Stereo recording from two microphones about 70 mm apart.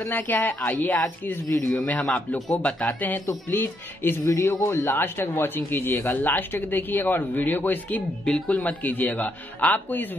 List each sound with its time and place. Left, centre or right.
0.0 s speech: left